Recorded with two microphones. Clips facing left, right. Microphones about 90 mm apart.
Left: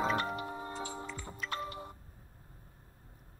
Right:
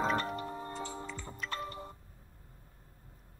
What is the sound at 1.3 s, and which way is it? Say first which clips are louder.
Music: left 1 dB; centre (ahead or behind).